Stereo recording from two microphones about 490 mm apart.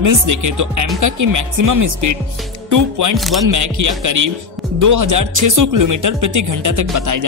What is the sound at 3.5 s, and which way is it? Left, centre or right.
Speech, right.